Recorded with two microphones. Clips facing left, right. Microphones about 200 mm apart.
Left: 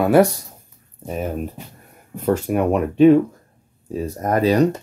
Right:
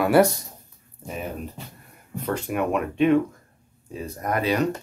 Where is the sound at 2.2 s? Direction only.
45° left (ahead or behind).